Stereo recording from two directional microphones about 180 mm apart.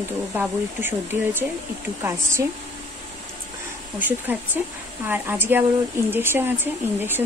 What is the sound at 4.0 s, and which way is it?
Speech, 10° right (ahead or behind).